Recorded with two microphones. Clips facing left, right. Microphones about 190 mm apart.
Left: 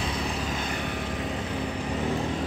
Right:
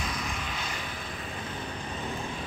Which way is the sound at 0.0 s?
30° left (ahead or behind).